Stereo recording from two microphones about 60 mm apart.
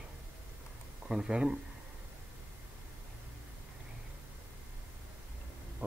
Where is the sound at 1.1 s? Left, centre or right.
Centre.